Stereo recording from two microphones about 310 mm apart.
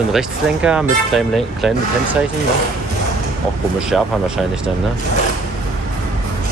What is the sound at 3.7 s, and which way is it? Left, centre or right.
Speech, centre.